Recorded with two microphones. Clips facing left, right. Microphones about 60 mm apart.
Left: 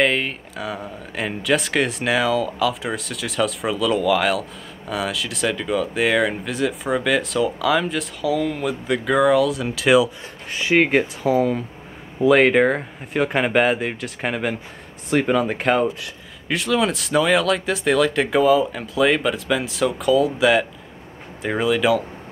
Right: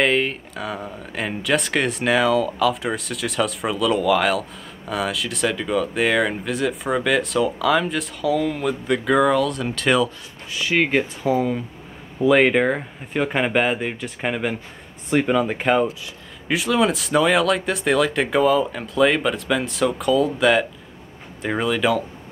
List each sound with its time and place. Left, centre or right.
0.0 s speech: centre
10.5 s speech: left
10.8 s speech: centre